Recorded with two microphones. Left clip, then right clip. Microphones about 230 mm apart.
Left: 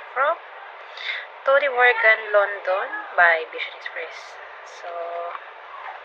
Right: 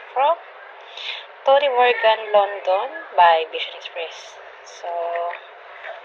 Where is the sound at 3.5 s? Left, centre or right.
Left.